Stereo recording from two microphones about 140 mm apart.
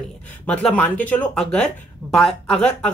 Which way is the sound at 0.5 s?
10° left (ahead or behind).